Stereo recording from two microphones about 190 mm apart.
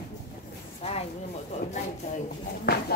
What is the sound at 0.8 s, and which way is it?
Speech, 30° left (ahead or behind).